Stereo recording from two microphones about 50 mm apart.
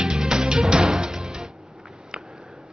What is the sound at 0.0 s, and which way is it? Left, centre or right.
Music, centre.